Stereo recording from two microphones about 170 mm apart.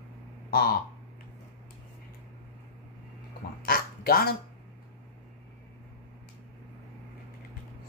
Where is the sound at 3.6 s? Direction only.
60° left (ahead or behind).